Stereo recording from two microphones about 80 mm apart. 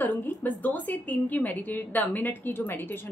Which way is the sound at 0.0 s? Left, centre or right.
Left.